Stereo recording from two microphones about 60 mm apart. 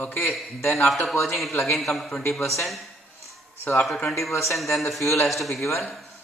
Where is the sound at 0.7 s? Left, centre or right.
Centre.